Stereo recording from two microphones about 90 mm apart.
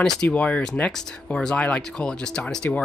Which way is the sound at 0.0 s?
10° left (ahead or behind).